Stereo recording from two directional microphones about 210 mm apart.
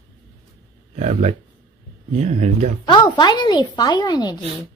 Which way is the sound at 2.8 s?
20° left (ahead or behind).